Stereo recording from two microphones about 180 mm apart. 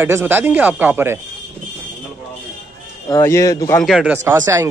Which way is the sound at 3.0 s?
20° left (ahead or behind).